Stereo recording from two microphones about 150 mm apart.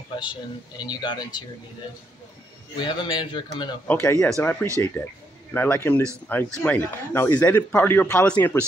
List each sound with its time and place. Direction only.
0.2 s speech: 30° left (ahead or behind)
2.8 s speech: 30° left (ahead or behind)
3.8 s a man's voice: 10° left (ahead or behind)